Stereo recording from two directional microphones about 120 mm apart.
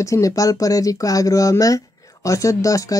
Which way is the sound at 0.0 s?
25° left (ahead or behind).